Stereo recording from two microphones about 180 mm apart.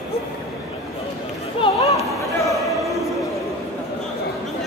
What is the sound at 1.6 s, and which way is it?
Chatter, 30° left (ahead or behind).